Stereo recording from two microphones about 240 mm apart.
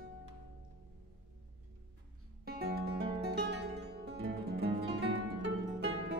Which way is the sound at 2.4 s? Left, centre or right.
Right.